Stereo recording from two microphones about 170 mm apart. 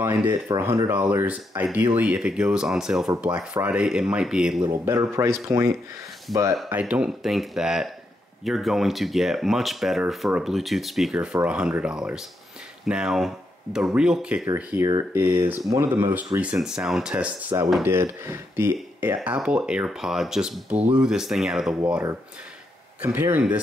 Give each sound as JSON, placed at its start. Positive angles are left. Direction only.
{"t": 0.0, "sound": "speech", "side_deg": -15}
{"t": 4.6, "sound": "speech", "side_deg": -15}
{"t": 6.7, "sound": "speech", "side_deg": -10}
{"t": 23.0, "sound": "speech", "side_deg": -10}